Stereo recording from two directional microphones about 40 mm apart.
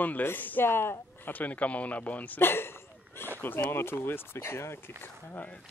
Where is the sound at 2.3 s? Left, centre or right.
Left.